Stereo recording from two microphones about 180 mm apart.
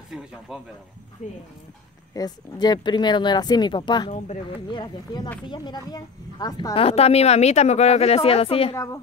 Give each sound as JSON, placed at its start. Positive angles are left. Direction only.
{"t": 0.1, "sound": "a sound", "side_deg": -5}
{"t": 0.5, "sound": "speech", "side_deg": -5}
{"t": 1.2, "sound": "speech", "side_deg": 40}
{"t": 2.1, "sound": "speech", "side_deg": 20}
{"t": 8.7, "sound": "a woman's voice", "side_deg": 20}